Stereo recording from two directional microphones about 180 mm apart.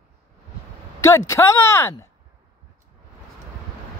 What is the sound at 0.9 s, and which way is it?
Speech, 15° left (ahead or behind).